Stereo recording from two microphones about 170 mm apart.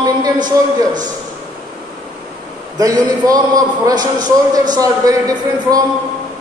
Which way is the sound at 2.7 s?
20° right (ahead or behind).